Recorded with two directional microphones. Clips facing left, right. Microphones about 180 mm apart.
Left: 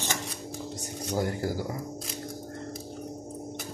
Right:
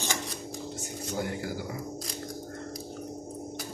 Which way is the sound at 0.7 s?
40° left (ahead or behind).